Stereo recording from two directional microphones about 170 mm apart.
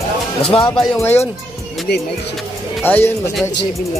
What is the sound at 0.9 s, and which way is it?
Speech, 15° left (ahead or behind).